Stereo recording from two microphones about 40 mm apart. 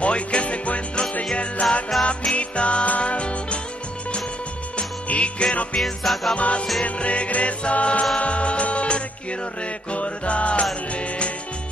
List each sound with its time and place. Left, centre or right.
0.0 s music: left
5.0 s music: left
5.8 s music: centre
6.3 s music: left